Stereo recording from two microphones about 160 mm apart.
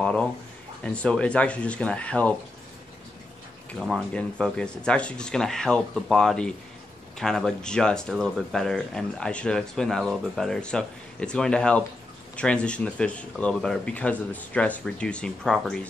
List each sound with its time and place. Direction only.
0.0 s speech: 5° left (ahead or behind)
3.8 s speech: 5° left (ahead or behind)